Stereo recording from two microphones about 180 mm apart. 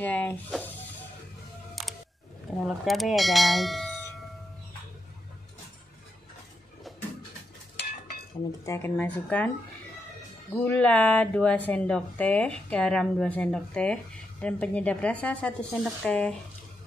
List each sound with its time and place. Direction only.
0.0 s speech: 10° left (ahead or behind)
2.6 s speech: centre (ahead or behind)
8.5 s speech: 15° left (ahead or behind)
10.5 s speech: 10° left (ahead or behind)